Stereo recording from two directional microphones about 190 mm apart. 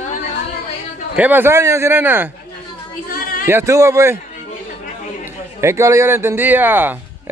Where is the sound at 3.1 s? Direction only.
50° left (ahead or behind).